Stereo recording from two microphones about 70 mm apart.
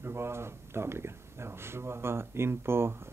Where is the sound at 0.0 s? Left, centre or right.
Right.